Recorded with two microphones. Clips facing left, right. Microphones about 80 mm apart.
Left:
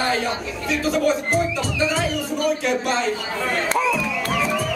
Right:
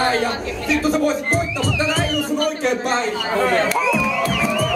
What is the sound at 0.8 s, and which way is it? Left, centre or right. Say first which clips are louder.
Speech: even; right.